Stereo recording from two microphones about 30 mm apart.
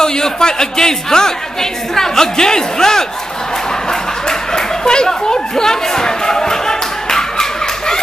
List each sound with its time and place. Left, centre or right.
0.0 s speech: left
4.3 s chatter: left